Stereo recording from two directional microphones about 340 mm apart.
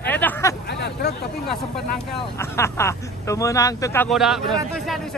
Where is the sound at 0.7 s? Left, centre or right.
Left.